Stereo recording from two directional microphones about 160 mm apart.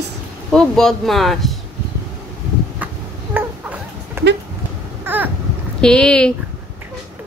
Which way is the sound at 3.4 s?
10° right (ahead or behind).